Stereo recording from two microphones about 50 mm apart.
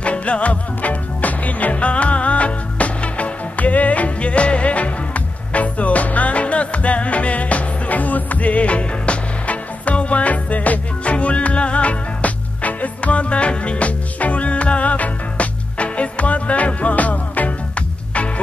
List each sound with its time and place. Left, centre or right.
0.0 s music: left